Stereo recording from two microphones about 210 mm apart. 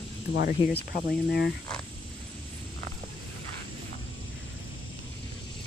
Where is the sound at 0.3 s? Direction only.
55° left (ahead or behind).